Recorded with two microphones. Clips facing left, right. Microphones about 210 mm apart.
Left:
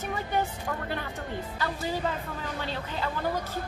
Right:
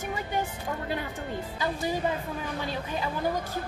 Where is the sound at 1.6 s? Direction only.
15° right (ahead or behind).